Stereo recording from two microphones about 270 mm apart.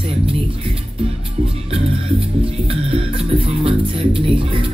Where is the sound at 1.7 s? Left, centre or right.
Right.